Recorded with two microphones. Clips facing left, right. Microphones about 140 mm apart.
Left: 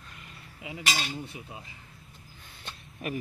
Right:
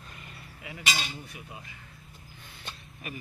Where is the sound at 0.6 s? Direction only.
20° left (ahead or behind).